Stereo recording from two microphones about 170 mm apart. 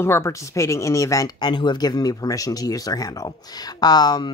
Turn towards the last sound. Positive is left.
turn(degrees=25)  # may be behind; listen again after turning